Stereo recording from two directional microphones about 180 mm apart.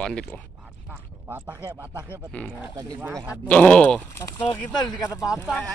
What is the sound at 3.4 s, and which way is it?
Speech, 5° left (ahead or behind).